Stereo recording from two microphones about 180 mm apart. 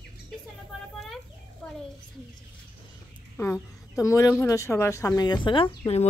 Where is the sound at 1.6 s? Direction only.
5° left (ahead or behind).